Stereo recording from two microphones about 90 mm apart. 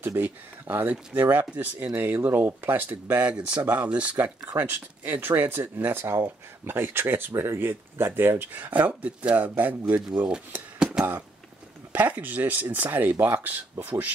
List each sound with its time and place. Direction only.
0.0 s speech: 25° right (ahead or behind)
10.8 s a sound: 5° right (ahead or behind)
11.9 s speech: 20° right (ahead or behind)